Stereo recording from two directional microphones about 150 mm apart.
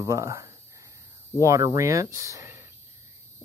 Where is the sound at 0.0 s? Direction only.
20° right (ahead or behind).